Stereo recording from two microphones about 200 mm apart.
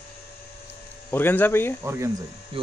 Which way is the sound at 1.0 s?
10° left (ahead or behind).